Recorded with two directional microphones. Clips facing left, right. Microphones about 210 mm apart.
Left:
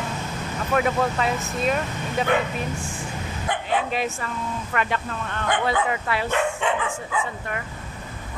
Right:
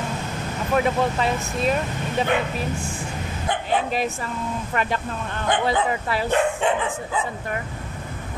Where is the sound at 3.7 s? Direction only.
35° right (ahead or behind).